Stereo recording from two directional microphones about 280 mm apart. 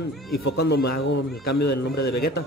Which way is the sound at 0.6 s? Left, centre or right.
Left.